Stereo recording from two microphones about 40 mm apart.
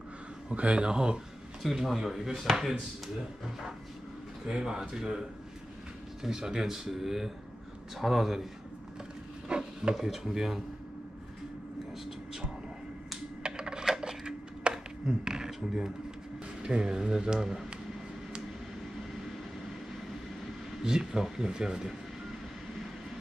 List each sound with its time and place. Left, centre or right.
0.5 s speech: right
1.6 s speech: centre
4.5 s speech: centre
6.2 s speech: centre
9.5 s a sound: right
9.9 s speech: centre
13.4 s a sound: right
16.6 s speech: right
20.8 s speech: centre